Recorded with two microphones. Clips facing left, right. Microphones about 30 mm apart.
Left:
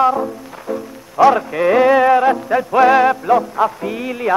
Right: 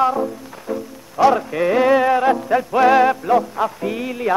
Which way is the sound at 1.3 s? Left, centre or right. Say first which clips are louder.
Left 3 dB; centre.